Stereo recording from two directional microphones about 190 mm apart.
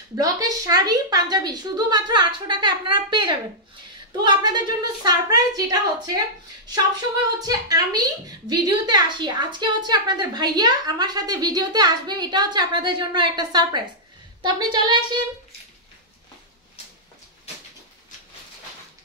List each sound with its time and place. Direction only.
0.1 s a woman's voice: 20° right (ahead or behind)
7.3 s a woman's voice: 20° right (ahead or behind)